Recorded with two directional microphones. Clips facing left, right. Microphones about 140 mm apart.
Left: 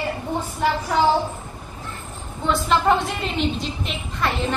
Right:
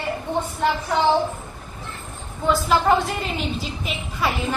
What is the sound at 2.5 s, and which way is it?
A woman's voice, centre (ahead or behind).